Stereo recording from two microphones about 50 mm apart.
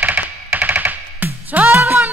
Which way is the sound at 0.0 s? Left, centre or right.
Right.